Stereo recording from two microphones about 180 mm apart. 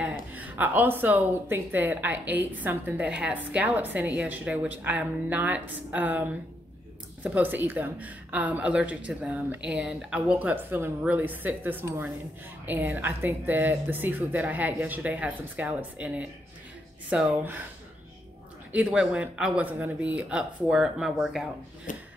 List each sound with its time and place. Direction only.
0.0 s a woman's voice: 10° right (ahead or behind)
18.7 s speech: 5° right (ahead or behind)
21.9 s a sound: 45° left (ahead or behind)